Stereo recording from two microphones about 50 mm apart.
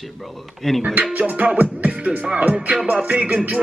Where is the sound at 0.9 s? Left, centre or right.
Right.